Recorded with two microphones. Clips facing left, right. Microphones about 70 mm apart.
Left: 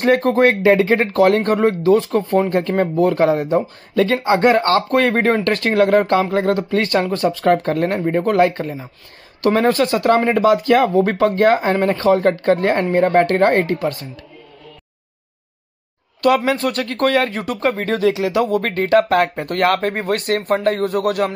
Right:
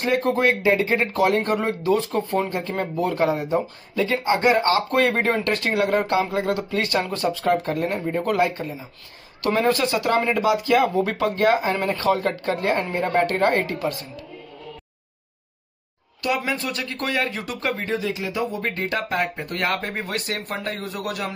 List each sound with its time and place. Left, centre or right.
0.0 s speech: left
2.1 s speech: left
2.7 s speech: left
3.9 s speech: left
4.9 s speech: left
7.4 s speech: left
9.4 s speech: left
16.4 s speech: left
17.8 s speech: left
18.7 s speech: left
19.1 s speech: left